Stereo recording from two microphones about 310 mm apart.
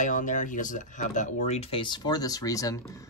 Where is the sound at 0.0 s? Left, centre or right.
Left.